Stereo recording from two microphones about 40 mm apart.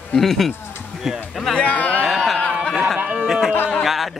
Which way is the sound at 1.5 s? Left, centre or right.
Left.